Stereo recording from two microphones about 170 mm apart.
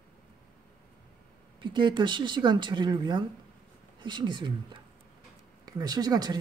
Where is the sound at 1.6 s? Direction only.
25° right (ahead or behind).